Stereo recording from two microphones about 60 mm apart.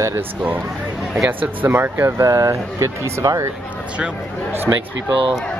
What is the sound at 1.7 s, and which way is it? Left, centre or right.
Speech, right.